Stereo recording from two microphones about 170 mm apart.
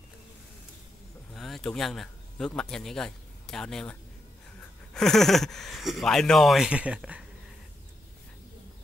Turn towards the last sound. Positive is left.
turn(degrees=-5)  # may be behind; listen again after turning